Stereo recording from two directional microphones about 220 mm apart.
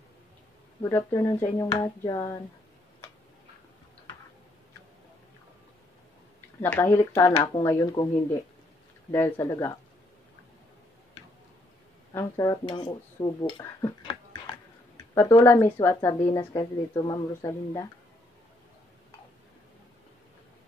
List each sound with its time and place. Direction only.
0.8 s speech: 10° left (ahead or behind)
6.6 s speech: 10° left (ahead or behind)
9.1 s speech: 10° left (ahead or behind)
12.1 s speech: 15° left (ahead or behind)